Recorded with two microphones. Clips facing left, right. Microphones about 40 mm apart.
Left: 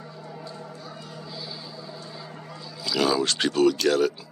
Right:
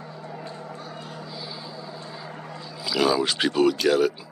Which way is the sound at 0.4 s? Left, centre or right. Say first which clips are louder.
Right 2 dB; right.